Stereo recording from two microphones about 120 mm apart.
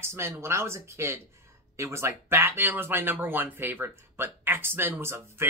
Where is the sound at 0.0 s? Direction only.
20° right (ahead or behind).